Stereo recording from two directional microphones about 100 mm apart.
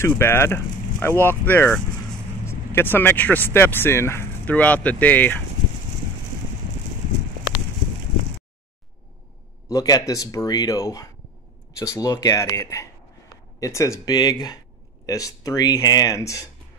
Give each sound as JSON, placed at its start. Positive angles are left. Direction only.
{"t": 0.0, "sound": "speech", "side_deg": 25}
{"t": 4.5, "sound": "speech", "side_deg": 15}
{"t": 9.7, "sound": "speech", "side_deg": 35}